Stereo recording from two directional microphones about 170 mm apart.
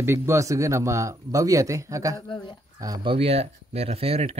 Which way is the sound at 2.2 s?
25° left (ahead or behind).